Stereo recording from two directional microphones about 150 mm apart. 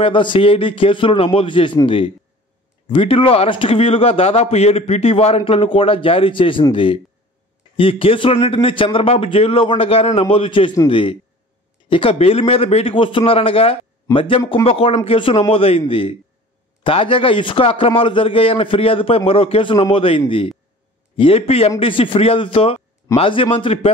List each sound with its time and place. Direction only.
0.0 s a man's voice: 35° left (ahead or behind)